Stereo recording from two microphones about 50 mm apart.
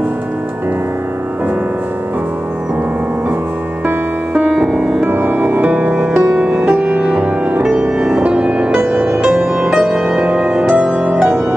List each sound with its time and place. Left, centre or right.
4.3 s music: centre
5.0 s music: right
6.3 s music: right